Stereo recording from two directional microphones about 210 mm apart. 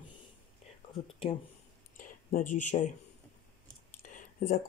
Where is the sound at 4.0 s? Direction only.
40° left (ahead or behind).